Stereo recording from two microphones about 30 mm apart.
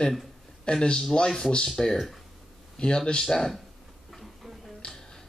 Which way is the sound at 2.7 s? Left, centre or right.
Left.